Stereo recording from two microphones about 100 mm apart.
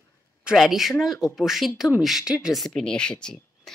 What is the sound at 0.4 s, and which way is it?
A woman's voice, 5° right (ahead or behind).